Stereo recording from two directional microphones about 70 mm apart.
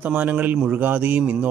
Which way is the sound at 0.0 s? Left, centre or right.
Right.